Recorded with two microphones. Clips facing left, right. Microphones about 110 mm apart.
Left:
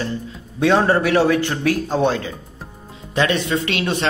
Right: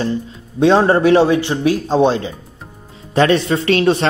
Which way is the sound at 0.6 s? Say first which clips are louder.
Right 4 dB; 25° right (ahead or behind).